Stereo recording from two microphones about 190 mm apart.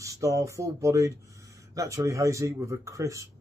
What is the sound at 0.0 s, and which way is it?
Speech, 15° right (ahead or behind).